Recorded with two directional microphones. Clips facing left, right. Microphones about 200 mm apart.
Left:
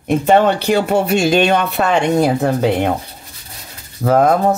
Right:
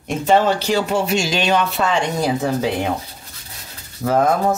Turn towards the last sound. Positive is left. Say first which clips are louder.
# left 4 dB
turn(degrees=60)  # may be behind; listen again after turning